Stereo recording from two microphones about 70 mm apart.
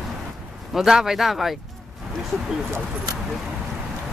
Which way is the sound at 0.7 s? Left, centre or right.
Centre.